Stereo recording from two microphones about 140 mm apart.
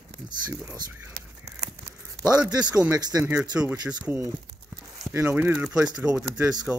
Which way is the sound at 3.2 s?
10° right (ahead or behind).